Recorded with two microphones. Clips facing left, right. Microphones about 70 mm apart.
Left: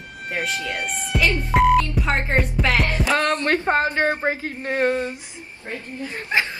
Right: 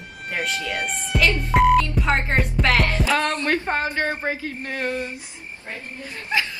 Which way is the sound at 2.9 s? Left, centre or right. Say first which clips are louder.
Left 1 dB; left.